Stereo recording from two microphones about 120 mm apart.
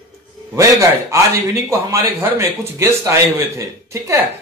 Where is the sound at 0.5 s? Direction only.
25° right (ahead or behind).